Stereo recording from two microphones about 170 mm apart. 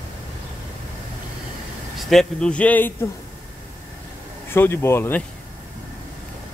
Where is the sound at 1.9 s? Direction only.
Centre (ahead or behind).